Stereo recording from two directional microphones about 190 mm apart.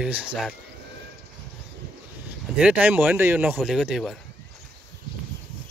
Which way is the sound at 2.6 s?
5° right (ahead or behind).